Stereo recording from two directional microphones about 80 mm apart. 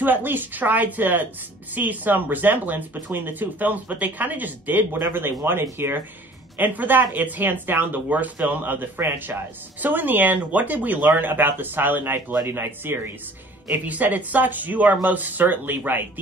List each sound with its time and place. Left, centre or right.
0.0 s speech: right